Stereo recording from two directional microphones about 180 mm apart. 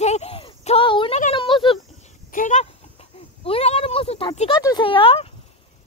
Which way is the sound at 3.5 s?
35° left (ahead or behind).